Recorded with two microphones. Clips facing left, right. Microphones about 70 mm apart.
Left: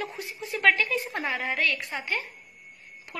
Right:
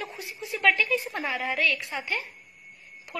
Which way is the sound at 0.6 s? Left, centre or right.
Left.